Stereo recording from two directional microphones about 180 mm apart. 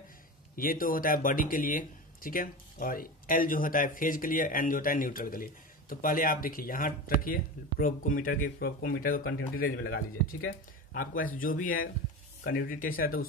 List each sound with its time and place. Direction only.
0.6 s speech: 50° left (ahead or behind)
10.9 s speech: 50° left (ahead or behind)